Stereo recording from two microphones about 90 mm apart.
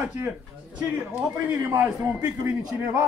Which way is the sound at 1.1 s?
15° right (ahead or behind).